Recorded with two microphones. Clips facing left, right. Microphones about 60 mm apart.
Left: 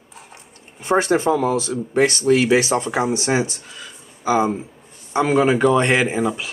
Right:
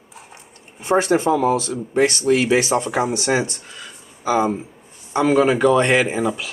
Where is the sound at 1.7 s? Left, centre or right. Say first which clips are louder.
Even; centre.